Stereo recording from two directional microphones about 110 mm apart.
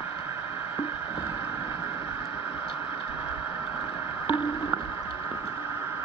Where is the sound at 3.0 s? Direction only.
55° left (ahead or behind).